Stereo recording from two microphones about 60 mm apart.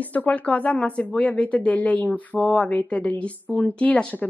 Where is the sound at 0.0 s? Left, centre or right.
Left.